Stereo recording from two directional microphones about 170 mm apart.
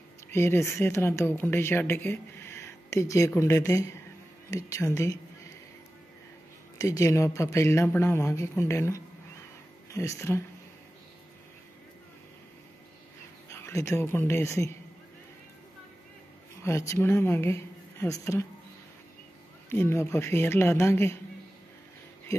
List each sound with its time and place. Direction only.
0.3 s speech: 15° left (ahead or behind)
6.8 s speech: 20° left (ahead or behind)
13.5 s speech: 15° left (ahead or behind)
16.6 s speech: 15° left (ahead or behind)
19.7 s speech: 15° left (ahead or behind)